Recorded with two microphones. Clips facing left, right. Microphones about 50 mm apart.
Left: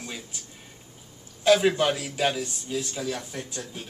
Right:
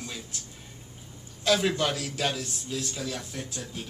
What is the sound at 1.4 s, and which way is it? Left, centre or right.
A man's voice, centre.